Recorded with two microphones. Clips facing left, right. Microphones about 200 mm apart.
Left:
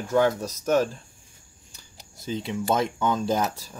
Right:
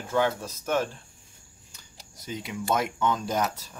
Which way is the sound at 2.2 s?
25° left (ahead or behind).